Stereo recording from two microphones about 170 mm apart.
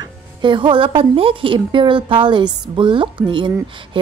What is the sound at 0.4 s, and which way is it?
A woman's voice, 30° right (ahead or behind).